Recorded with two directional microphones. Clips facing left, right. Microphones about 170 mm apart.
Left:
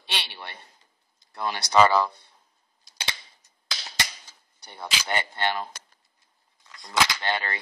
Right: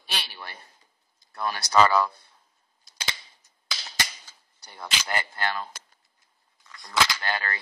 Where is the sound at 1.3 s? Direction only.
25° left (ahead or behind).